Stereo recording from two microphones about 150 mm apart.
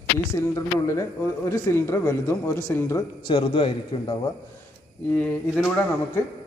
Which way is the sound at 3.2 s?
35° left (ahead or behind).